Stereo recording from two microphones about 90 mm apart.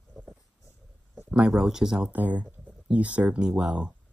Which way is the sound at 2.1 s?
15° right (ahead or behind).